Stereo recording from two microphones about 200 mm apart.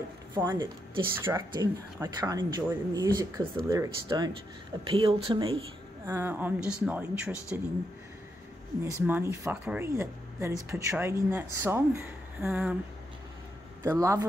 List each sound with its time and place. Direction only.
0.3 s speech: 10° right (ahead or behind)
6.0 s speech: 10° right (ahead or behind)
9.0 s speech: 10° right (ahead or behind)
13.8 s speech: 15° right (ahead or behind)